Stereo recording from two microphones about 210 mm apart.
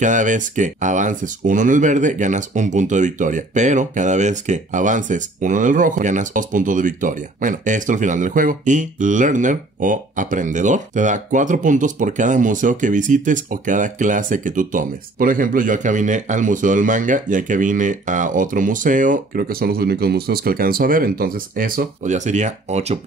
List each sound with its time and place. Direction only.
0.0 s speech: 35° right (ahead or behind)